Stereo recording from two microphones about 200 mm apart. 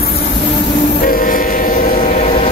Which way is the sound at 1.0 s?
45° left (ahead or behind).